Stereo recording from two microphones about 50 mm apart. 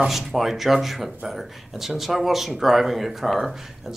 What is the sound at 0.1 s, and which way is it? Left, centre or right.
Speech, centre.